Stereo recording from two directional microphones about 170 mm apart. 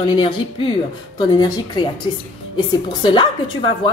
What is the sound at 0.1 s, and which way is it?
Speech, 30° left (ahead or behind).